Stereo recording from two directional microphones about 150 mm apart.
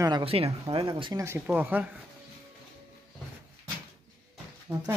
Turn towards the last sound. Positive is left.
turn(degrees=-15)  # may be behind; listen again after turning